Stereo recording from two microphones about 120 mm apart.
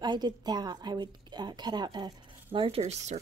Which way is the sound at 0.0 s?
35° right (ahead or behind).